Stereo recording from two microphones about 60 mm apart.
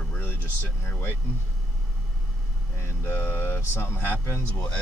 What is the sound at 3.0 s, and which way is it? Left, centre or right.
Speech, left.